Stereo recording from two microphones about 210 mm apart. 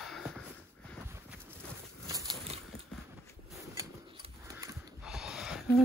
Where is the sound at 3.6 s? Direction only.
15° right (ahead or behind).